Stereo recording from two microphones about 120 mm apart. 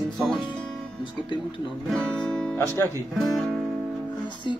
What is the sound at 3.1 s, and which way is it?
Speech, centre (ahead or behind).